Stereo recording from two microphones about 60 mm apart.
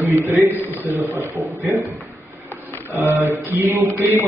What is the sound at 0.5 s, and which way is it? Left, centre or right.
Speech, right.